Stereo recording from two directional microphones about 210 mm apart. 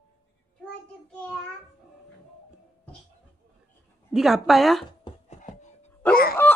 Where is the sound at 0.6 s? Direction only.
5° left (ahead or behind).